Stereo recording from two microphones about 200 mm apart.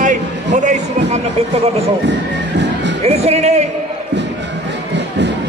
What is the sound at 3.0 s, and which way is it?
Music, 30° right (ahead or behind).